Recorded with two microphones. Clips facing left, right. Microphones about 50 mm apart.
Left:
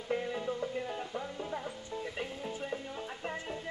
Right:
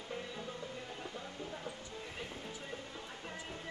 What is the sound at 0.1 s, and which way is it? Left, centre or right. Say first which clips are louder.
Music: left 10 dB; left.